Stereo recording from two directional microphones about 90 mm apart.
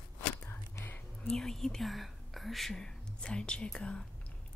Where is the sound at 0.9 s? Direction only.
5° left (ahead or behind).